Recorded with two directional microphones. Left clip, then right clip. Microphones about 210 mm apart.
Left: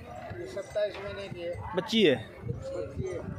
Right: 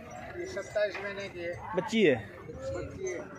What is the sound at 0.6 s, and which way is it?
Speech, 30° left (ahead or behind).